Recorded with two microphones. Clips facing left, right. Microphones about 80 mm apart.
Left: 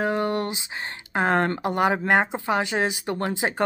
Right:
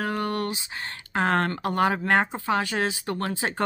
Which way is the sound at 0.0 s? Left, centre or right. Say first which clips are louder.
Left 3 dB; left.